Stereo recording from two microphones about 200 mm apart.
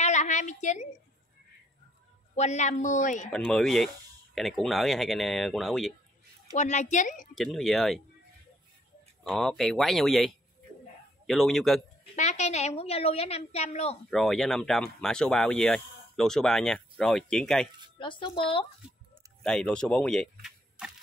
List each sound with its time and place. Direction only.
0.0 s a sound: 35° left (ahead or behind)
2.3 s a woman's voice: 35° left (ahead or behind)
3.3 s speech: 5° left (ahead or behind)
6.5 s a woman's voice: 35° left (ahead or behind)
7.3 s speech: centre (ahead or behind)
9.3 s speech: centre (ahead or behind)
12.2 s a woman's voice: 35° left (ahead or behind)
14.1 s speech: centre (ahead or behind)
17.9 s speech: 25° left (ahead or behind)
19.4 s speech: 5° left (ahead or behind)